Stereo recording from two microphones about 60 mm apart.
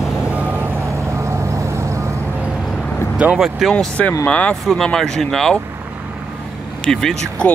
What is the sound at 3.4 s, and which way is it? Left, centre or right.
Speech, centre.